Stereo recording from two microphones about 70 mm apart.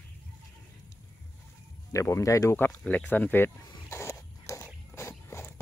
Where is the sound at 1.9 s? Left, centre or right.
Left.